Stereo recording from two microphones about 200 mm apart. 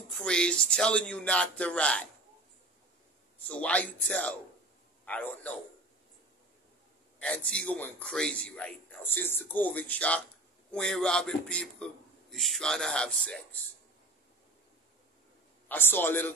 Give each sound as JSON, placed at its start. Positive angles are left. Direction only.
{"t": 0.1, "sound": "a man's voice", "side_deg": 5}
{"t": 3.4, "sound": "a man's voice", "side_deg": 5}
{"t": 7.2, "sound": "a man's voice", "side_deg": 5}
{"t": 15.7, "sound": "a man's voice", "side_deg": 10}